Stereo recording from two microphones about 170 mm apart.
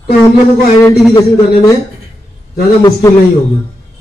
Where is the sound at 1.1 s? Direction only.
25° left (ahead or behind).